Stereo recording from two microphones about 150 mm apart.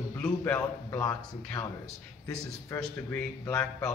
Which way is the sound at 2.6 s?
20° left (ahead or behind).